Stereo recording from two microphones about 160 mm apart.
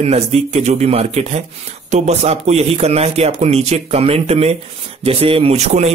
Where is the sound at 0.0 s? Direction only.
40° right (ahead or behind).